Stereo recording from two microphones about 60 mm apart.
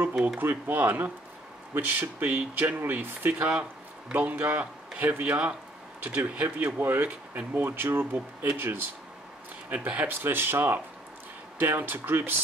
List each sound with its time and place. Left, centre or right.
0.4 s a man's voice: right
10.2 s speech: right